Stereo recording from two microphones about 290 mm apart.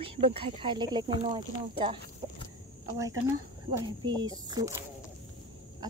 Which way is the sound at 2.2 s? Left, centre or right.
Centre.